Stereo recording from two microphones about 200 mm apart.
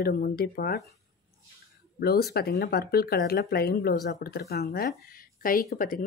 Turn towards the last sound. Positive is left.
turn(degrees=45)  # may be behind; listen again after turning